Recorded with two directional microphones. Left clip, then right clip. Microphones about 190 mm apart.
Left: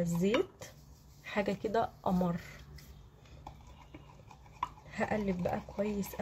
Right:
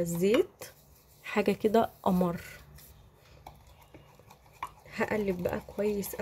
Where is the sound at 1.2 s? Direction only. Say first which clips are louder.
Right 6 dB; 40° right (ahead or behind).